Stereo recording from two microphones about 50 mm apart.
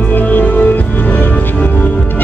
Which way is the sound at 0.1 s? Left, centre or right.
Left.